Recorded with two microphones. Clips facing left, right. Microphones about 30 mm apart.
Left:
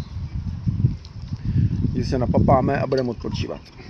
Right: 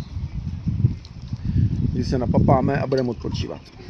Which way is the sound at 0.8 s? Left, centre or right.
Centre.